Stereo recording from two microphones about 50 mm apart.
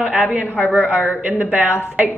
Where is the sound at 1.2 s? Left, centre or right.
Right.